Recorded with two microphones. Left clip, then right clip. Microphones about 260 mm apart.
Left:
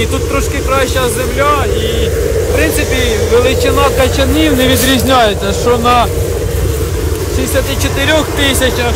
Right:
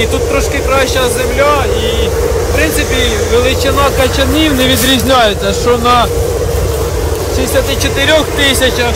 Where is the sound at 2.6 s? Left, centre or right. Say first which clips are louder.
Right 1 dB; left.